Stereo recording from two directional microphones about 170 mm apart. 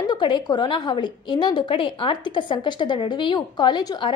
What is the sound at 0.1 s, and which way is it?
A woman's voice, 25° left (ahead or behind).